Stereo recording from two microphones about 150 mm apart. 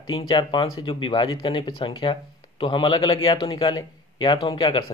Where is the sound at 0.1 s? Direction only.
25° left (ahead or behind).